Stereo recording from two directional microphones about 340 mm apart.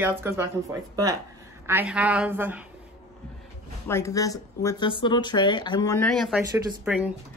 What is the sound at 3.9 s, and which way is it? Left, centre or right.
A woman's voice, centre.